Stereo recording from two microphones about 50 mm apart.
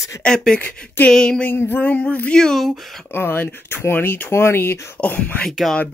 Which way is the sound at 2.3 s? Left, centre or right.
Centre.